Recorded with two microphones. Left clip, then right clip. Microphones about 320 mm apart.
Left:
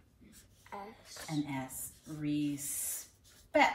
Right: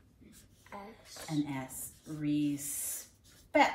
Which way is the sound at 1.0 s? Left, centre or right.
Centre.